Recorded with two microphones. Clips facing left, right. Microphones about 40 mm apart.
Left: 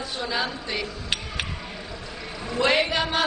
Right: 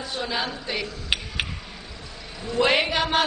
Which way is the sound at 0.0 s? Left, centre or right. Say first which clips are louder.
Even; centre.